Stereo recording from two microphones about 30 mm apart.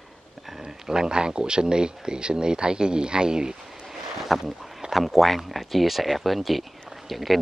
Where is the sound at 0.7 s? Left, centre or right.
Centre.